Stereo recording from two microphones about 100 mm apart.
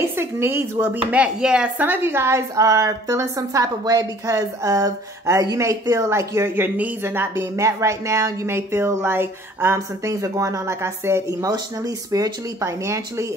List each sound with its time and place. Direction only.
0.2 s a woman's voice: 25° right (ahead or behind)
1.2 s speech: 10° right (ahead or behind)
1.8 s a woman's voice: 20° right (ahead or behind)